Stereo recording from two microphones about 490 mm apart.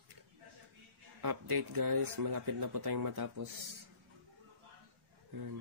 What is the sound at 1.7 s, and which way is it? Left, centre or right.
Speech, right.